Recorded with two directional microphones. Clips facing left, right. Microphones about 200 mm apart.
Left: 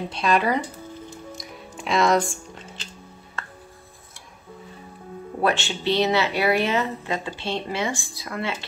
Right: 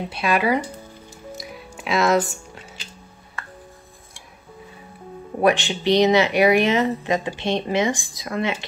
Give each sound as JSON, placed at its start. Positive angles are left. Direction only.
{"t": 0.1, "sound": "speech", "side_deg": -10}
{"t": 1.3, "sound": "music", "side_deg": -5}
{"t": 5.4, "sound": "speech", "side_deg": -15}